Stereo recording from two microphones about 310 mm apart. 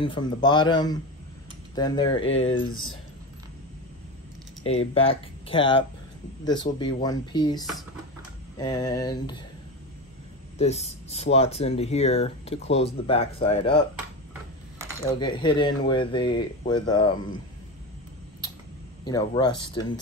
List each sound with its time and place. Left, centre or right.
0.0 s speech: centre
4.7 s speech: centre
10.6 s speech: left
15.1 s speech: centre
19.0 s speech: centre